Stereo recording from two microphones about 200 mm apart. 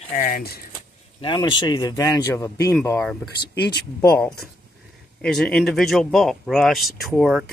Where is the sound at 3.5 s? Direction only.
55° left (ahead or behind).